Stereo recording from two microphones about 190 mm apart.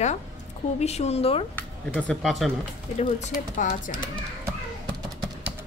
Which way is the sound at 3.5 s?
40° left (ahead or behind).